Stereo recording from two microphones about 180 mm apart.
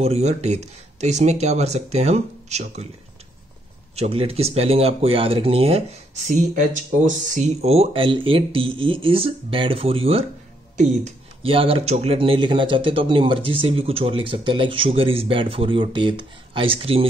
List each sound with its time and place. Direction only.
0.0 s speech: 35° right (ahead or behind)
3.9 s speech: 35° right (ahead or behind)
11.4 s speech: 30° right (ahead or behind)